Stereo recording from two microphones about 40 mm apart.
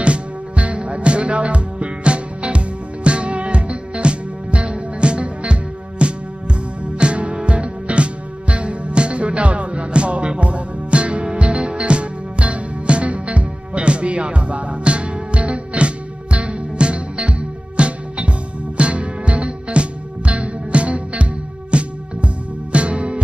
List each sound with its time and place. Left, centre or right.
0.0 s music: right